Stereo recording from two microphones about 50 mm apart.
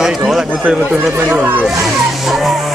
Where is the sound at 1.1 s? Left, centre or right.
Right.